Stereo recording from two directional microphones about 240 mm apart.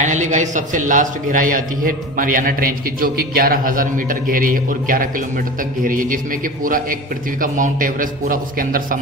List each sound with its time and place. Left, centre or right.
0.0 s a man's voice: right